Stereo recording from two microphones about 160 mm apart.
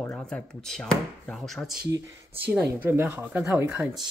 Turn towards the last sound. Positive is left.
turn(degrees=-5)  # may be behind; listen again after turning